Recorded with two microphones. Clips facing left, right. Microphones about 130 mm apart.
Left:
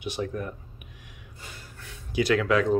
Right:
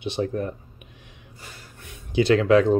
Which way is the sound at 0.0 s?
30° right (ahead or behind).